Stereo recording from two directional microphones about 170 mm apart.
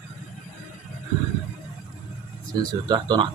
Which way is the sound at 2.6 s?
25° right (ahead or behind).